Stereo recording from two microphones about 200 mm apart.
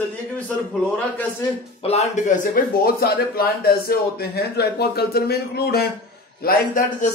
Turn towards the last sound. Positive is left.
turn(degrees=45)  # may be behind; listen again after turning